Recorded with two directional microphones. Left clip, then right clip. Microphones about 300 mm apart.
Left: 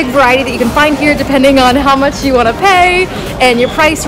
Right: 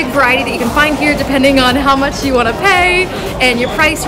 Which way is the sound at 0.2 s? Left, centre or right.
Centre.